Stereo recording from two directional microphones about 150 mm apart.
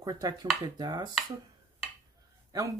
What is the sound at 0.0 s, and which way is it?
Speech, 25° right (ahead or behind).